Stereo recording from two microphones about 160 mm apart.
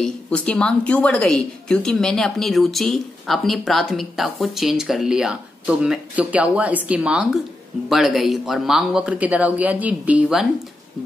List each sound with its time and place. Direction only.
0.0 s speech: 5° left (ahead or behind)